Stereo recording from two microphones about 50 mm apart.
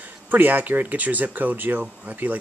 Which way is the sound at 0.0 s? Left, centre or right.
Right.